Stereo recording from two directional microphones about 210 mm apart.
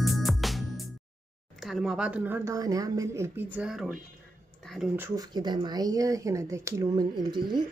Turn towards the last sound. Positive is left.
turn(degrees=-20)  # may be behind; listen again after turning